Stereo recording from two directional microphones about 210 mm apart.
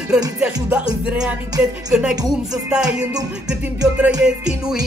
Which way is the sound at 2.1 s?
20° right (ahead or behind).